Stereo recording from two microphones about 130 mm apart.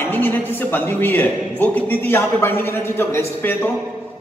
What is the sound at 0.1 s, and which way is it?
A man's voice, 15° left (ahead or behind).